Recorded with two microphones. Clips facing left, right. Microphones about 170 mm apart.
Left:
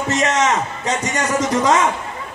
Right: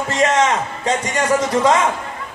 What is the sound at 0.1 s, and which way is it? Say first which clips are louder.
A man's voice: right 2 dB; 30° right (ahead or behind).